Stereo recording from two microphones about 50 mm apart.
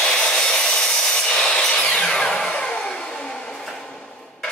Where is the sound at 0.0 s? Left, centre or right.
Centre.